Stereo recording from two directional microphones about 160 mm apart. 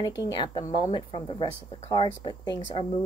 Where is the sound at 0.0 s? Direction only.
25° left (ahead or behind).